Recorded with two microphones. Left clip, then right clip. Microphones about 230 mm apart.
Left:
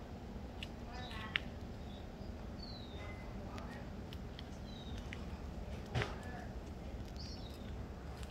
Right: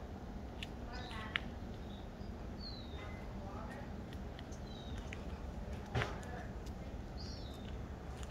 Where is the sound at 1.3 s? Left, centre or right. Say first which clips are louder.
Left 1 dB; centre.